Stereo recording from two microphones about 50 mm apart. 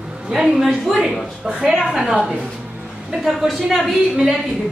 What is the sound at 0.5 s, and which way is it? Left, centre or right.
A woman's voice, centre.